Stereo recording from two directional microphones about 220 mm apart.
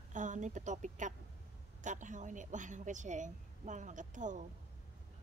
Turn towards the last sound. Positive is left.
turn(degrees=-35)  # may be behind; listen again after turning